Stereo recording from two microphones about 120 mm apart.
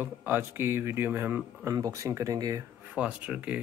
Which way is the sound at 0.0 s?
15° right (ahead or behind).